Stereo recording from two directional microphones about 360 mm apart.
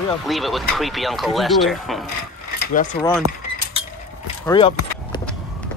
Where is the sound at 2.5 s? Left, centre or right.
Left.